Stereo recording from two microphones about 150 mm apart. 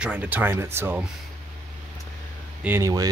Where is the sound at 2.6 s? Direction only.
15° right (ahead or behind).